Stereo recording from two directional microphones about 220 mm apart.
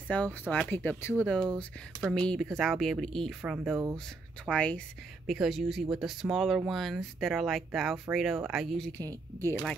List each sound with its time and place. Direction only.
0.1 s speech: 5° left (ahead or behind)
3.5 s speech: 10° right (ahead or behind)
4.5 s speech: 5° left (ahead or behind)